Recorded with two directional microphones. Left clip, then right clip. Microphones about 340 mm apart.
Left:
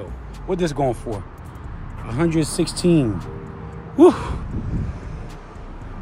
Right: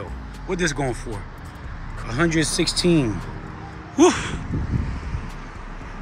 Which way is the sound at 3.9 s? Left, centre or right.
Centre.